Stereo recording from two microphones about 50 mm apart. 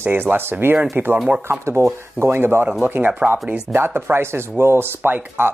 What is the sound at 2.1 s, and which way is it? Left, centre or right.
Speech, right.